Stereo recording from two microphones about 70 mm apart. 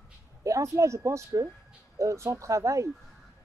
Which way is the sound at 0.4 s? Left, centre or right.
Right.